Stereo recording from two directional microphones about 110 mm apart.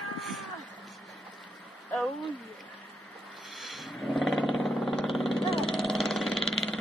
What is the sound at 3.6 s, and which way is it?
Vehicle, centre (ahead or behind).